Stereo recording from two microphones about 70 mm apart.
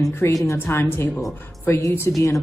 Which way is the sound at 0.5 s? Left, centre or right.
Left.